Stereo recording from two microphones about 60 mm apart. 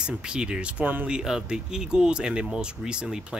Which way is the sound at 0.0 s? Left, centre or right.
Centre.